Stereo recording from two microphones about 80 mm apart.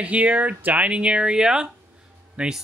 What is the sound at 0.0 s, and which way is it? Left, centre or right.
Speech, centre.